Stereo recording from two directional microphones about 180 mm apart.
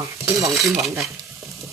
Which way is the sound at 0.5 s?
Centre (ahead or behind).